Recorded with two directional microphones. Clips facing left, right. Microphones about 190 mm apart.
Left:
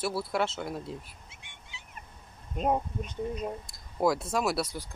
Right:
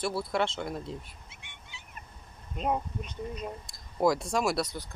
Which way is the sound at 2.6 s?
45° left (ahead or behind).